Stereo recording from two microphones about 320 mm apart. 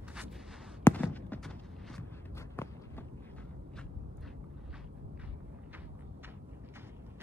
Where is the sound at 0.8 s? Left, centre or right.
Centre.